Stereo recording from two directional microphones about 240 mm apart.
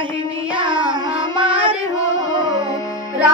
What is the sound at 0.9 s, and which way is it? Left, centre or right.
Music, right.